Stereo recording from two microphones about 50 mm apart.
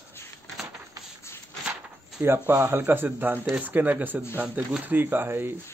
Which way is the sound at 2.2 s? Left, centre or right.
Right.